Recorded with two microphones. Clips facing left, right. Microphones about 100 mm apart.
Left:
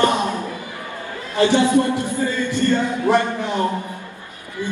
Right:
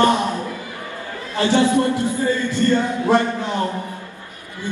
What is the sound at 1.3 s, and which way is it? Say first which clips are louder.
Speech: left 1 dB; 20° left (ahead or behind).